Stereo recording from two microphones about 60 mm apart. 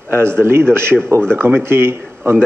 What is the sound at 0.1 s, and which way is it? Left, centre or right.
Speech, right.